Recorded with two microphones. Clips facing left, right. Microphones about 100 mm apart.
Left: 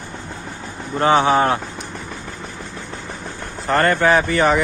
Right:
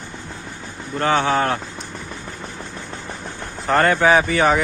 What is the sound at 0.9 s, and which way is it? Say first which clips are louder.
Speech: left 4 dB; 20° left (ahead or behind).